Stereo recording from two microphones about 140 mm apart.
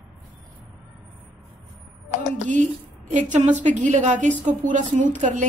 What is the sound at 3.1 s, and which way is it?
A woman's voice, 60° right (ahead or behind).